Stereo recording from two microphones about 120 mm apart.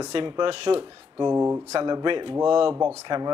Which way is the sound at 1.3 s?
20° right (ahead or behind).